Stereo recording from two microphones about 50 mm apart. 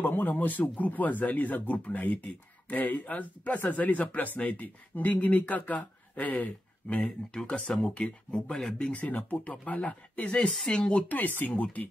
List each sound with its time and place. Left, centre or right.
0.0 s speech: left
7.6 s speech: centre
8.9 s speech: left
11.1 s speech: left